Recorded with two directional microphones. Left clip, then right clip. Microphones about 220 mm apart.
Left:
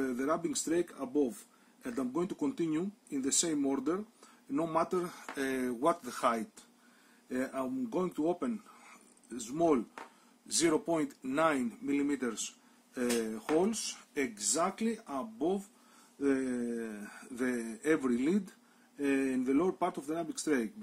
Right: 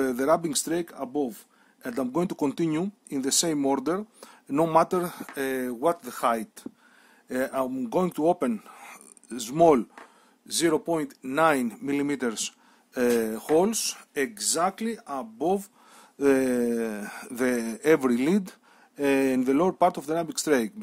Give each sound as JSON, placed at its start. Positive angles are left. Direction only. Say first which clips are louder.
{"t": 0.0, "sound": "speech", "louder": "right 10 dB", "side_deg": -45}
{"t": 7.2, "sound": "speech", "louder": "right 9 dB", "side_deg": -50}
{"t": 10.4, "sound": "speech", "louder": "right 6 dB", "side_deg": -30}